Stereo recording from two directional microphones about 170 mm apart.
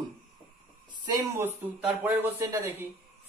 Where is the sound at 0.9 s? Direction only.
25° right (ahead or behind).